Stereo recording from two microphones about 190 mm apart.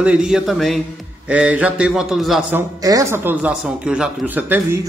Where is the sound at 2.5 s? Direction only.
15° right (ahead or behind).